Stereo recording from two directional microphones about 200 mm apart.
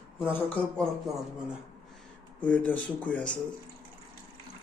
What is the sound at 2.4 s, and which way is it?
Speech, 5° left (ahead or behind).